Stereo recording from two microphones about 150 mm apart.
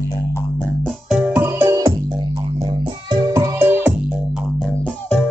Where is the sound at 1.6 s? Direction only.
20° right (ahead or behind).